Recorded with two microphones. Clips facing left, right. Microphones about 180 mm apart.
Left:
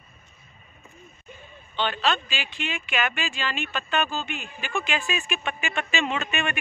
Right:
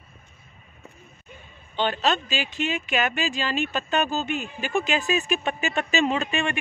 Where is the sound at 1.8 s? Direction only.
45° right (ahead or behind).